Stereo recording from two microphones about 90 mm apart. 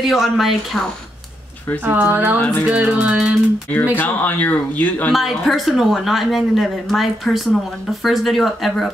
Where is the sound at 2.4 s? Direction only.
15° left (ahead or behind).